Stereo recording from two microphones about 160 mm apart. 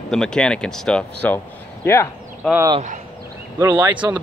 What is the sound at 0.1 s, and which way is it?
Speech, 5° left (ahead or behind).